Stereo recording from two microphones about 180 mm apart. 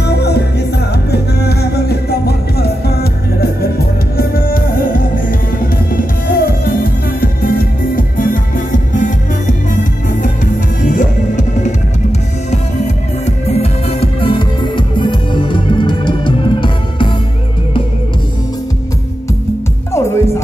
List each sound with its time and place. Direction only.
0.0 s music: 65° left (ahead or behind); by 17.1 s 25° left (ahead or behind)
19.9 s music: 15° left (ahead or behind)